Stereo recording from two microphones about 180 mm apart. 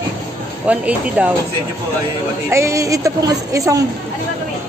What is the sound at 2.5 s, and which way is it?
A man's voice, 15° right (ahead or behind).